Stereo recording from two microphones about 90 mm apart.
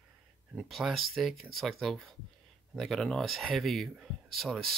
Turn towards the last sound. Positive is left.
turn(degrees=0)  # may be behind; listen again after turning